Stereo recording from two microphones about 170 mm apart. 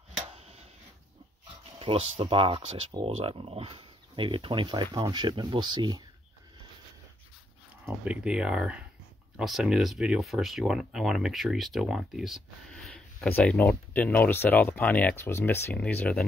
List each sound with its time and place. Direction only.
0.3 s a sound: 35° right (ahead or behind)
1.8 s speech: 30° right (ahead or behind)
7.8 s speech: 10° right (ahead or behind); by 16.3 s 10° left (ahead or behind)